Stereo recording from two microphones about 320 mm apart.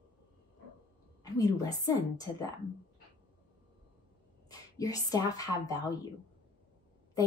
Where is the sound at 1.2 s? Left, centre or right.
Centre.